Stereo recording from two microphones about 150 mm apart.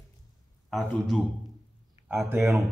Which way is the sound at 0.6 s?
Centre (ahead or behind).